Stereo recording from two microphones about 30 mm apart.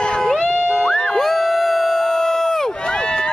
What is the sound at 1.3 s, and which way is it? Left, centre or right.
Crowd, centre.